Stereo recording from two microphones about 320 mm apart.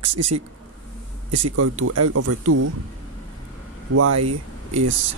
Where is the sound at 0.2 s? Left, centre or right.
Right.